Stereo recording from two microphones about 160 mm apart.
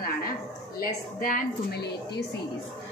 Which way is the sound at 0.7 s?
65° left (ahead or behind).